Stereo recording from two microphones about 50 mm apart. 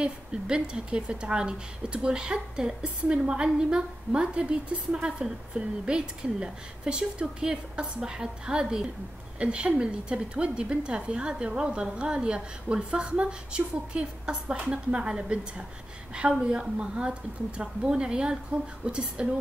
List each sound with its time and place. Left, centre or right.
0.0 s a woman's voice: centre